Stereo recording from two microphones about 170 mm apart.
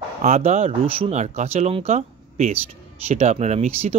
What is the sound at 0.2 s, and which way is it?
Speech, 45° right (ahead or behind).